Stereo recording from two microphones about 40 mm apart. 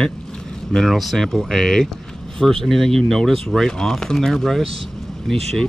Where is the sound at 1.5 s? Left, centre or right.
Centre.